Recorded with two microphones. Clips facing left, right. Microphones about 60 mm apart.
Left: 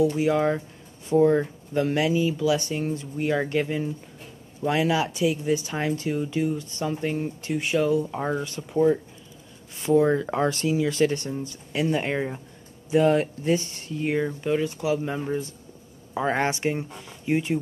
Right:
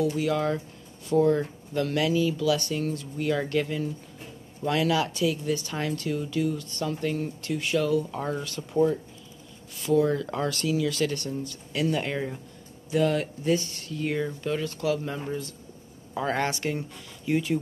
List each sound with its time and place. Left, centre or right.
0.2 s speech: left